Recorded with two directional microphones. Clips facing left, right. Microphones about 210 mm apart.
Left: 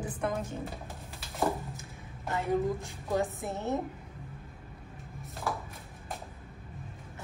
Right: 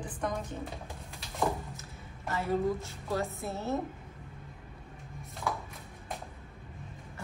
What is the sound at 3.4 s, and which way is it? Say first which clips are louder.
Speech: left 1 dB; 15° left (ahead or behind).